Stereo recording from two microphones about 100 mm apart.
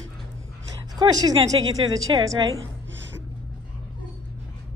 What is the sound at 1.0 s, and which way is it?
A woman's voice, 35° right (ahead or behind).